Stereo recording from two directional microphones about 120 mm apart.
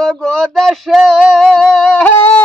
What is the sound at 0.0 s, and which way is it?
Male singing, 5° left (ahead or behind).